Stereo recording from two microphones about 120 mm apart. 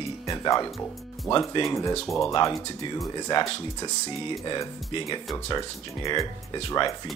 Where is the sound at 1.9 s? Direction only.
5° left (ahead or behind).